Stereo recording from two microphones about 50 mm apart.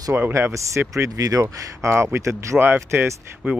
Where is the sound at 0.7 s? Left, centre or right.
Right.